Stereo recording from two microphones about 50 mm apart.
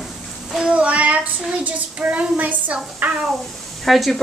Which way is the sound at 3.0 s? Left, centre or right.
Right.